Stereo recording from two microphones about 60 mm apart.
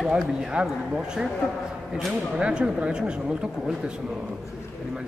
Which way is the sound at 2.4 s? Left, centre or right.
Centre.